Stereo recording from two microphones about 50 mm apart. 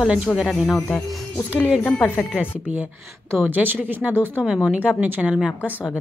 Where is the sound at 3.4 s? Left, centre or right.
Right.